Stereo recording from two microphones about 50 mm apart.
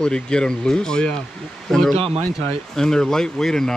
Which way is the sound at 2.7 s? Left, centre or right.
Centre.